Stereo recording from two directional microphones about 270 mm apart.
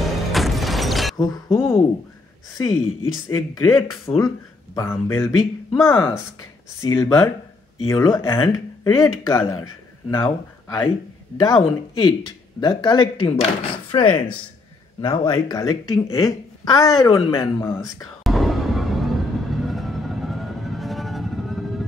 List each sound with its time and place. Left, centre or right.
0.3 s a sound: centre
1.1 s speech: centre
18.2 s music: centre